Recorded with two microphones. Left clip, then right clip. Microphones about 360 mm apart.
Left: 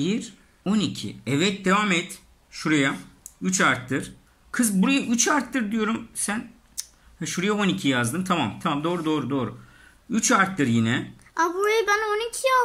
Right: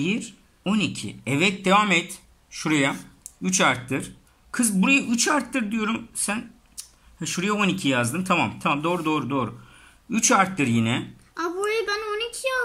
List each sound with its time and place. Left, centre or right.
0.0 s speech: centre
11.3 s child singing: centre